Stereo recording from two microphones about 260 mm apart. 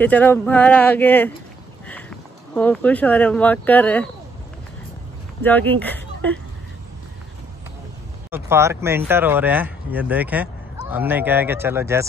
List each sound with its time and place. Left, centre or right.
0.0 s speech: centre
5.4 s speech: centre
8.3 s speech: centre